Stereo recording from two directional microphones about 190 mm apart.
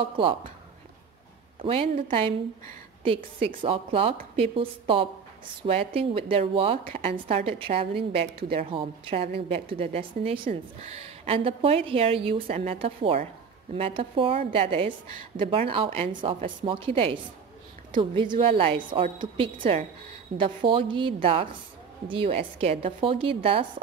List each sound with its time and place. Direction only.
0.1 s a woman's voice: 25° right (ahead or behind)
1.6 s a woman's voice: 30° right (ahead or behind)
3.3 s a woman's voice: 30° right (ahead or behind)